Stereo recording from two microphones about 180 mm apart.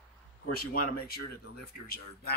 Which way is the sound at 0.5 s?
55° left (ahead or behind).